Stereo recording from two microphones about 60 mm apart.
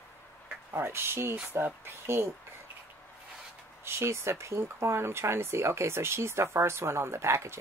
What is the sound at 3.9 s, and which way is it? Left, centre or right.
Speech, right.